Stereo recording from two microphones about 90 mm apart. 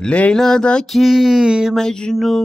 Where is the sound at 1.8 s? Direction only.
5° left (ahead or behind).